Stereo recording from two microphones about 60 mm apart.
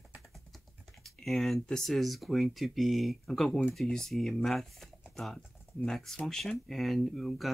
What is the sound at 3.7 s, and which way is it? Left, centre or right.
Speech, centre.